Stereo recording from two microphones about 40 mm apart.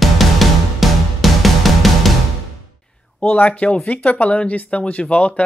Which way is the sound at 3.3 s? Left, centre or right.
Left.